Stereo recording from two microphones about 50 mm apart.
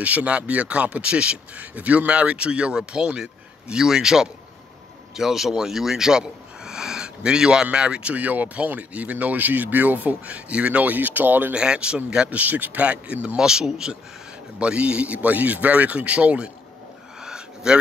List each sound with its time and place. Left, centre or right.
0.0 s speech: right
8.1 s speech: right
11.5 s speech: centre
12.3 s speech: right
13.4 s speech: centre
17.2 s a sound: centre